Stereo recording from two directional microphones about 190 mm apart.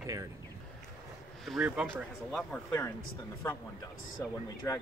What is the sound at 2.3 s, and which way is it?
Speech, 10° left (ahead or behind).